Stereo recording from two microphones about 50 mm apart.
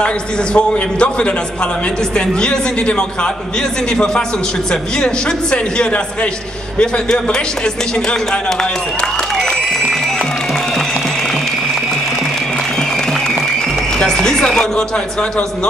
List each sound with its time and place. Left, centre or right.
0.0 s a man's voice: left
9.4 s applause: centre
13.9 s speech: centre